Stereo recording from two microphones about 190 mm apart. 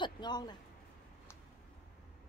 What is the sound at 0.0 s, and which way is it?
Speech, 20° left (ahead or behind).